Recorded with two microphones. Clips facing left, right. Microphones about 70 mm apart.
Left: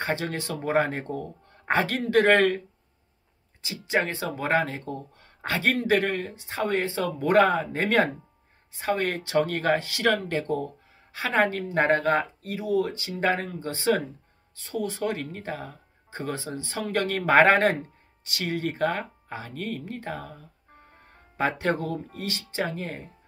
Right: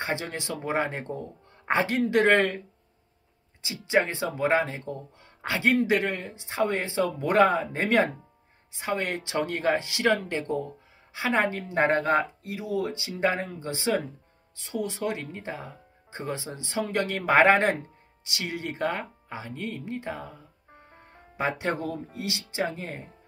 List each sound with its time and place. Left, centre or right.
0.0 s speech: centre
4.1 s speech: right
21.4 s speech: centre